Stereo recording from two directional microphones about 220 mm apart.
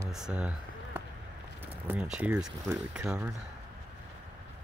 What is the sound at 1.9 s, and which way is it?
Speech, 5° right (ahead or behind).